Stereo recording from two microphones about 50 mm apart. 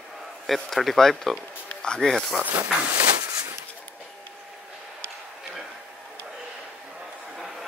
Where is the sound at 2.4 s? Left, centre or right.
Right.